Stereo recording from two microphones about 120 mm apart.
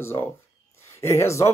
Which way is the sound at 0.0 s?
20° left (ahead or behind).